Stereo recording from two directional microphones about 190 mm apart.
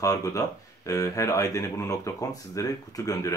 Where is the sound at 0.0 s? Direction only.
20° left (ahead or behind).